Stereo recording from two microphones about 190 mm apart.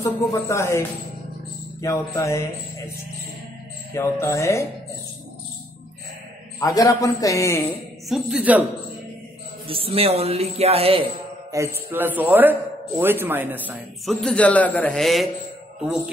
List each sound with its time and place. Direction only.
0.3 s a man's voice: 15° left (ahead or behind)
3.9 s a man's voice: 15° left (ahead or behind)
6.6 s a man's voice: 20° left (ahead or behind)
8.1 s speech: 5° right (ahead or behind)
9.7 s speech: 30° right (ahead or behind)
11.5 s speech: 15° right (ahead or behind)
14.2 s a man's voice: 5° left (ahead or behind)